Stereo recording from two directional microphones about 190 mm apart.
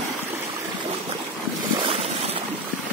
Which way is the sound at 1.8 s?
25° right (ahead or behind).